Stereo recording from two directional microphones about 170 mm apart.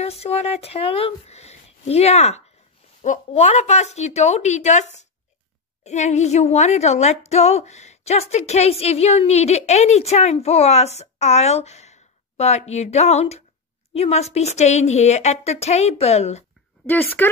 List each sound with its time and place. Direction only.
0.0 s a woman's voice: 40° left (ahead or behind)
16.8 s speech: 10° left (ahead or behind)